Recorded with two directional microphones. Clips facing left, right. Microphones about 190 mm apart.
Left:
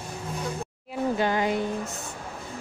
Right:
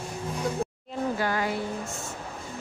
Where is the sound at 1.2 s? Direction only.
20° left (ahead or behind).